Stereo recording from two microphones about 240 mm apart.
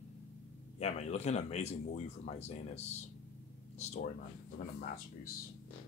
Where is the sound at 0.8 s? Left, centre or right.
Left.